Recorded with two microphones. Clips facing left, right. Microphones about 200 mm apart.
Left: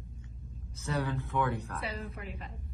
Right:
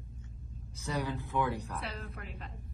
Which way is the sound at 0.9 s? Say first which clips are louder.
Left 2 dB; 15° right (ahead or behind).